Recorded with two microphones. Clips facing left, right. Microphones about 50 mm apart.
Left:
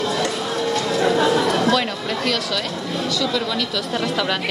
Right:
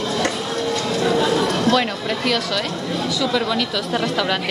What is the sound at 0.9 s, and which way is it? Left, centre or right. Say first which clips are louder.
Chatter: left 1 dB; left.